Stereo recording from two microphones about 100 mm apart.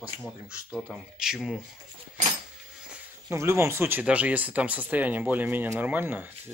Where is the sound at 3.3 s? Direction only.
30° right (ahead or behind).